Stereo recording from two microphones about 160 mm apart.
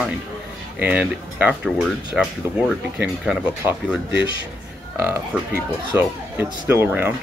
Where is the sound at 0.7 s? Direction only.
10° right (ahead or behind).